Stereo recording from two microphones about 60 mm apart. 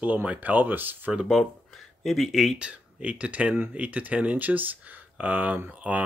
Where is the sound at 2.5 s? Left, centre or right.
Centre.